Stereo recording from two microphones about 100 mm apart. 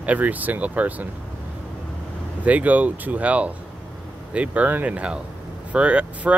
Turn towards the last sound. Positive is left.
turn(degrees=-10)  # may be behind; listen again after turning